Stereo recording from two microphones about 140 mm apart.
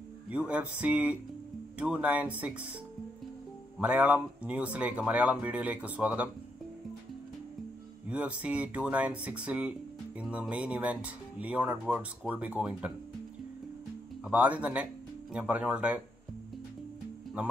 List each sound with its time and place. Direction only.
0.3 s speech: 10° right (ahead or behind)
3.7 s speech: 10° right (ahead or behind)
8.1 s speech: 10° right (ahead or behind)
14.2 s speech: 10° right (ahead or behind)